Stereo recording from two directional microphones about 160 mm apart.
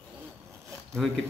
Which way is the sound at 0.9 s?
5° left (ahead or behind).